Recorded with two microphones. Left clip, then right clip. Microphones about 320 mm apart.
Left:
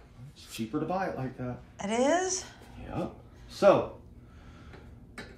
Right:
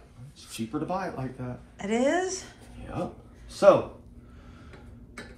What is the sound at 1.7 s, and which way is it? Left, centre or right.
Speech, centre.